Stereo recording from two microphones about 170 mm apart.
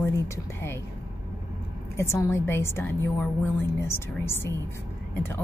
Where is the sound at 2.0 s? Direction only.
15° left (ahead or behind).